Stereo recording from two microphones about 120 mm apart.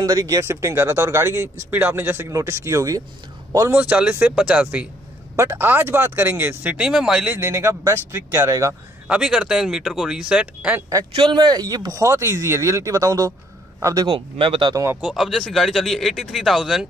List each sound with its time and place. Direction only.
0.0 s speech: 35° right (ahead or behind)
0.4 s speech: 25° right (ahead or behind)
3.7 s speech: 10° right (ahead or behind)
7.3 s speech: 20° right (ahead or behind)
9.0 s speech: 5° right (ahead or behind)
11.1 s a man's voice: 35° right (ahead or behind)
14.0 s speech: 45° right (ahead or behind)
15.0 s speech: 5° right (ahead or behind)